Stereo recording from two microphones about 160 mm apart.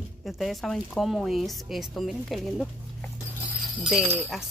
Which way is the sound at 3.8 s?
5° right (ahead or behind).